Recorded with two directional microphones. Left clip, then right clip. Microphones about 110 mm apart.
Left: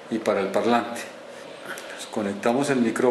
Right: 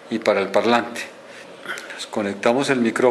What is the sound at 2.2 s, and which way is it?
Speech, 15° right (ahead or behind).